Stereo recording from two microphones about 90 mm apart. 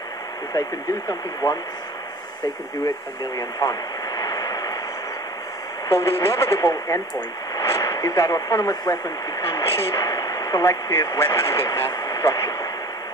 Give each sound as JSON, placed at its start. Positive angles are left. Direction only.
{"t": 0.6, "sound": "speech", "side_deg": 35}
{"t": 3.3, "sound": "speech", "side_deg": 45}
{"t": 4.2, "sound": "vehicle", "side_deg": 45}
{"t": 5.9, "sound": "speech", "side_deg": 30}